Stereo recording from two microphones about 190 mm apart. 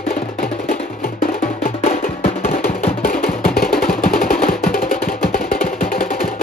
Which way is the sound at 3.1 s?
50° left (ahead or behind).